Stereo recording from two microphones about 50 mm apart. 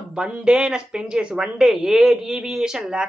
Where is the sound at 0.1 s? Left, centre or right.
Centre.